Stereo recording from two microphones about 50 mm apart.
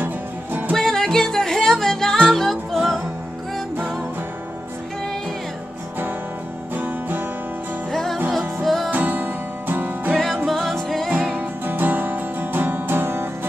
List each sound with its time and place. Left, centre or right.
0.0 s music: right
0.7 s music: centre
6.7 s music: right
7.9 s music: centre
8.9 s music: right
10.1 s music: centre
11.1 s music: right